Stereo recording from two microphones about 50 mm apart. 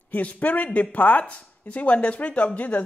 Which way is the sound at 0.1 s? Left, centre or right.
Left.